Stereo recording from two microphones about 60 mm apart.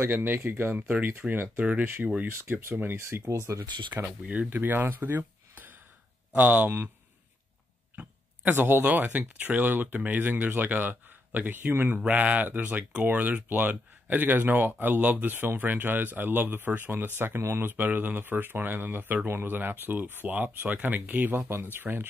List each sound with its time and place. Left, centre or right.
0.0 s speech: right
1.2 s speech: centre
1.6 s speech: right
2.2 s speech: right
3.3 s speech: right
3.9 s speech: right
7.9 s speech: right
11.9 s speech: right
12.4 s speech: right